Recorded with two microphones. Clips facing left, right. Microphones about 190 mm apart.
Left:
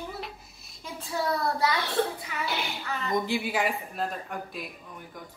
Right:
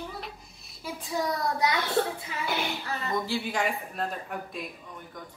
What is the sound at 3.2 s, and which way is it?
Speech, 10° left (ahead or behind).